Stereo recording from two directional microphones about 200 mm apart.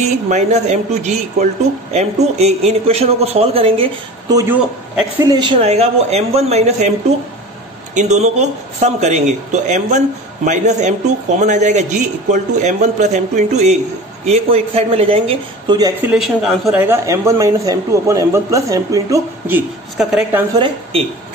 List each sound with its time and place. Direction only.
0.0 s a man's voice: 35° right (ahead or behind)
7.9 s a man's voice: 35° right (ahead or behind)
16.0 s speech: 5° right (ahead or behind)
16.8 s a man's voice: 15° right (ahead or behind)
20.5 s speech: 25° right (ahead or behind)